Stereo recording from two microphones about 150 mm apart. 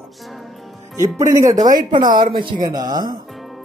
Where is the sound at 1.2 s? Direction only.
20° right (ahead or behind).